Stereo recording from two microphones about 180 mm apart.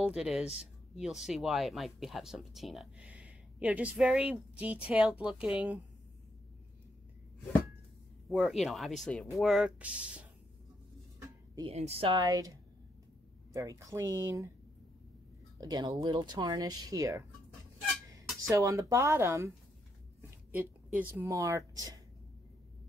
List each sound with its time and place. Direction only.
0.0 s speech: 5° right (ahead or behind)
8.3 s speech: centre (ahead or behind)
11.6 s speech: 35° right (ahead or behind); by 14.5 s 15° right (ahead or behind)
15.6 s speech: 20° right (ahead or behind)
18.5 s speech: 20° right (ahead or behind)